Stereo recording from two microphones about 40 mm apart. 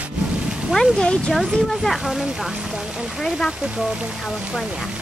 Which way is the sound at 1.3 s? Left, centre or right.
Centre.